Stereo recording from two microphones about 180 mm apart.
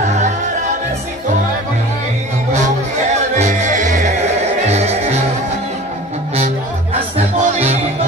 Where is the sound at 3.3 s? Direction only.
40° right (ahead or behind).